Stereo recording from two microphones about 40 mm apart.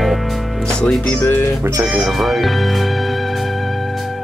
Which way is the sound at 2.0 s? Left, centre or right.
Centre.